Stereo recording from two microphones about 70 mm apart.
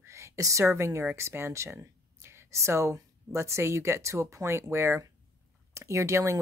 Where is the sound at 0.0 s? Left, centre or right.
Right.